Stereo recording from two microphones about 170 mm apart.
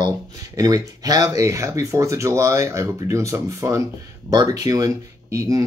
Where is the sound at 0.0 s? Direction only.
20° right (ahead or behind).